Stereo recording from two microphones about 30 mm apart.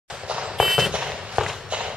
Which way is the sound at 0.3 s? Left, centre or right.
Right.